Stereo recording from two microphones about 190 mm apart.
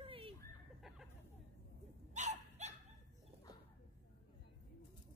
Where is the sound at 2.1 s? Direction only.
40° right (ahead or behind).